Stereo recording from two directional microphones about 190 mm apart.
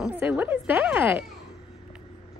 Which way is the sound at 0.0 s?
5° right (ahead or behind).